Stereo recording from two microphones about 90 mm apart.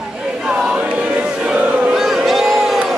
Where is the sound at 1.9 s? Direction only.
Centre (ahead or behind).